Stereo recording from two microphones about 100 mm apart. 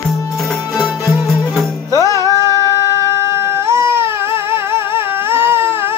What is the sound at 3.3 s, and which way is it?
Baby cry, 25° right (ahead or behind).